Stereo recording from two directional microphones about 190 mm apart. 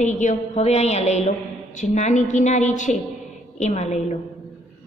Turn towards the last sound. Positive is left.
turn(degrees=35)  # may be behind; listen again after turning